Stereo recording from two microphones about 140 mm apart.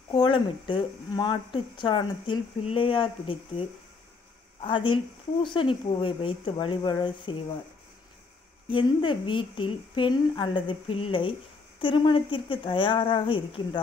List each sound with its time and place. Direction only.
0.1 s speech: 35° left (ahead or behind)
8.6 s speech: 35° left (ahead or behind)